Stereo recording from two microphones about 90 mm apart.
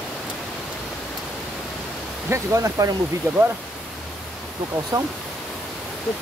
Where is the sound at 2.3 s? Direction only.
35° right (ahead or behind).